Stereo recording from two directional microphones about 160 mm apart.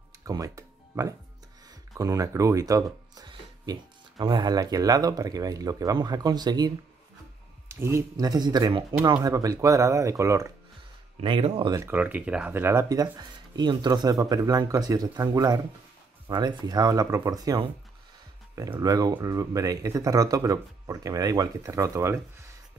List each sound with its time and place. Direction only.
0.2 s music: 20° right (ahead or behind)
2.0 s speech: 20° right (ahead or behind)
11.1 s speech: 35° right (ahead or behind)
11.9 s speech: 10° right (ahead or behind)